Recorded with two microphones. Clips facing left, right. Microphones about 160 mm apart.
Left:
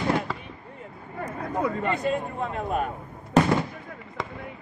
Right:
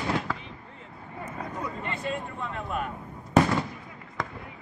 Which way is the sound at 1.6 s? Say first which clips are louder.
Left 9 dB; 45° left (ahead or behind).